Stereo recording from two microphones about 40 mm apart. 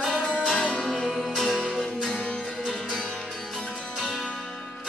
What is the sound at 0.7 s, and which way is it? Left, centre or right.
Music, left.